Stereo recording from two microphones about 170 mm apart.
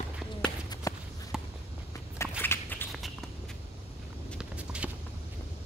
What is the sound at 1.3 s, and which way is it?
Walk, 5° right (ahead or behind).